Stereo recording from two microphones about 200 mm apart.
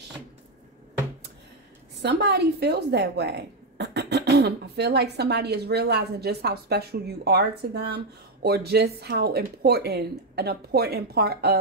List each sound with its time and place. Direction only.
2.0 s speech: 55° right (ahead or behind)